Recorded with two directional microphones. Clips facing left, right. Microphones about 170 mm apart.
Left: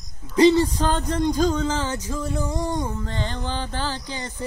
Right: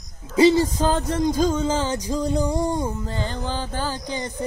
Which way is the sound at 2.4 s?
15° right (ahead or behind).